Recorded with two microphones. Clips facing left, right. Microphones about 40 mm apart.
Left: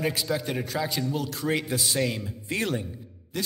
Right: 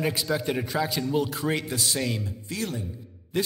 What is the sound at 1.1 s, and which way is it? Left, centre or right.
Speech, centre.